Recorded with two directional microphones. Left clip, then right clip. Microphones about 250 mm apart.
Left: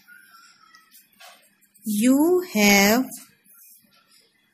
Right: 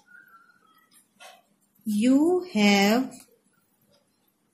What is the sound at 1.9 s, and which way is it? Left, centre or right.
Speech, left.